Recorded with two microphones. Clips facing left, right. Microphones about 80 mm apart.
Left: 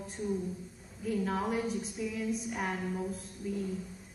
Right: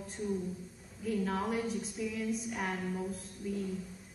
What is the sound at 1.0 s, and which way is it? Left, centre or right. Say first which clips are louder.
A woman's voice: left 1 dB; centre.